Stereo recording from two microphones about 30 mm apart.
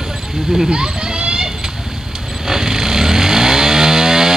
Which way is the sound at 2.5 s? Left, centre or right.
Centre.